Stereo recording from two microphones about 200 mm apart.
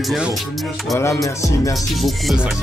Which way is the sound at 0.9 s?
15° left (ahead or behind).